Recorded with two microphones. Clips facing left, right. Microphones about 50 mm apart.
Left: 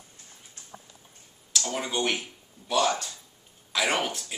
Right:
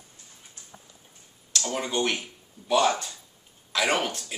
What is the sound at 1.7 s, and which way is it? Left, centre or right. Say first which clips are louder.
Speech: right 1 dB; centre.